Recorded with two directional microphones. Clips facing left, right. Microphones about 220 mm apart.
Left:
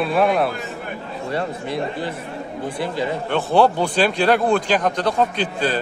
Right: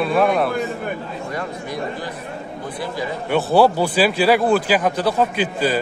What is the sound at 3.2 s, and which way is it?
Speech, 5° right (ahead or behind).